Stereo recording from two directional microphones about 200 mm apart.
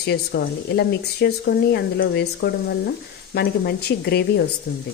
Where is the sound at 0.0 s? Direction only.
55° left (ahead or behind).